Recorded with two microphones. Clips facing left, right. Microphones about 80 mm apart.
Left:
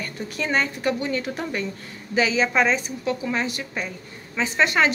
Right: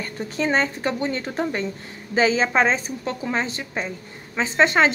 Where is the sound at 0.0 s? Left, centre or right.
Right.